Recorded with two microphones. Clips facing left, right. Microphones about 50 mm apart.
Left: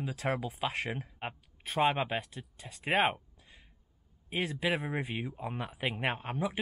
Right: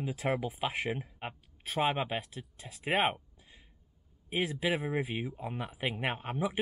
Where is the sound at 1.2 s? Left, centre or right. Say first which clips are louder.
Left 1 dB; centre.